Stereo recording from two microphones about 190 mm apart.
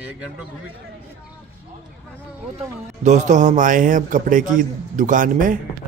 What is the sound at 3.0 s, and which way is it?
A man's voice, 40° right (ahead or behind).